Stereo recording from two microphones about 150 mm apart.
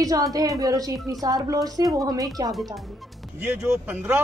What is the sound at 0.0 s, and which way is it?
Speech, 25° right (ahead or behind).